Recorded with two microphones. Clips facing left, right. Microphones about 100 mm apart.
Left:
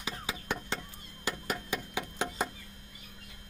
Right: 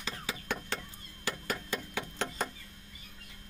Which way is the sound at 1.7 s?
10° left (ahead or behind).